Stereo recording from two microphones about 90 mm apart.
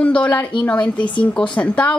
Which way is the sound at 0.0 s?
15° left (ahead or behind).